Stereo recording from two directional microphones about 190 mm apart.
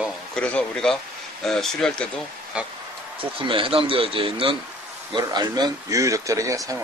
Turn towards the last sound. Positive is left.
turn(degrees=-15)  # may be behind; listen again after turning